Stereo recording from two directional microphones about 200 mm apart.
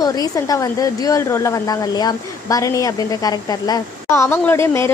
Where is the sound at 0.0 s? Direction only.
20° left (ahead or behind).